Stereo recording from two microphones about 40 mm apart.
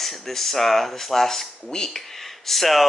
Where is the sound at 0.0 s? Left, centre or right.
Centre.